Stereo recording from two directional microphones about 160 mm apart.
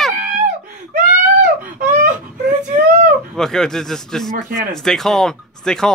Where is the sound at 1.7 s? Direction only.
55° right (ahead or behind).